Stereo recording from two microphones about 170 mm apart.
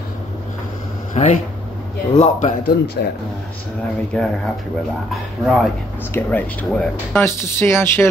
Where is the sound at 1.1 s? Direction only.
40° left (ahead or behind).